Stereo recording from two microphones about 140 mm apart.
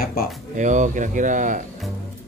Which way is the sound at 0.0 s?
90° left.